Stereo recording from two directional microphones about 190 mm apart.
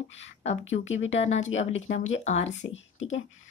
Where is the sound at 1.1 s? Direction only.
35° left (ahead or behind).